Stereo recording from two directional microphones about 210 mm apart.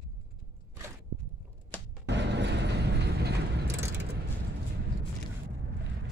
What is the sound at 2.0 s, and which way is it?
Vehicle, 55° right (ahead or behind).